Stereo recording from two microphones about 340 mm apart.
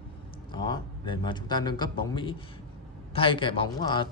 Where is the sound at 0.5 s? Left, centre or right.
Centre.